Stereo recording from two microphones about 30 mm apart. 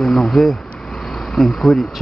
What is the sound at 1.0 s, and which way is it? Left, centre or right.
Vehicle, centre.